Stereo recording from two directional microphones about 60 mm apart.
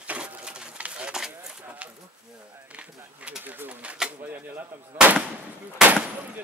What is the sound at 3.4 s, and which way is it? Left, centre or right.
Pigeon, right.